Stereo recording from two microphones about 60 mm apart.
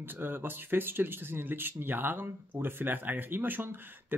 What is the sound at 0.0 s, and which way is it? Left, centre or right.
Speech, right.